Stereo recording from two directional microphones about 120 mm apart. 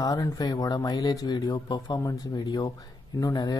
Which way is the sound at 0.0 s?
30° left (ahead or behind).